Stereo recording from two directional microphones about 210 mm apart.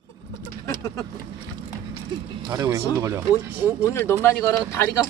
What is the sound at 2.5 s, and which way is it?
Speech, 15° right (ahead or behind).